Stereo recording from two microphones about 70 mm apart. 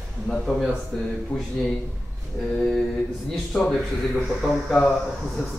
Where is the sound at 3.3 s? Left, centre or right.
Centre.